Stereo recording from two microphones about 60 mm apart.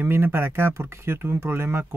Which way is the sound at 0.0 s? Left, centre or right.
Right.